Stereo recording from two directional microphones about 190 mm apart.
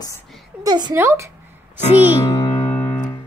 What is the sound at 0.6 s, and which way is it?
Speech, 20° right (ahead or behind).